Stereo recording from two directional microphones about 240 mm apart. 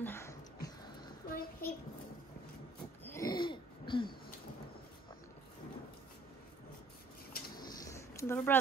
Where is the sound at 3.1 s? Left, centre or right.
Centre.